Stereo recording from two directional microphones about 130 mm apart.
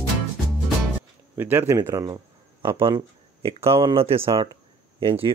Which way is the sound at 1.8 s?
30° right (ahead or behind).